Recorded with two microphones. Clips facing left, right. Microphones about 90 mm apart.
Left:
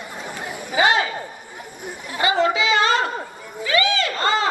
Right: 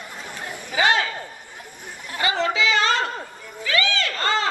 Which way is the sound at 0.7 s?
20° left (ahead or behind).